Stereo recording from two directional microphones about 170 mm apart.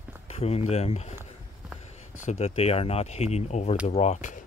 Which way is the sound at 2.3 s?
35° left (ahead or behind).